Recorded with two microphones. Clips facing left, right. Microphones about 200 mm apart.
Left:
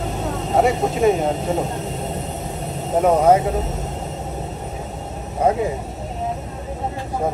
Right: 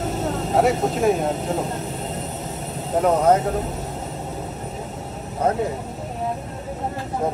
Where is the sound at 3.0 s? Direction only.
10° left (ahead or behind).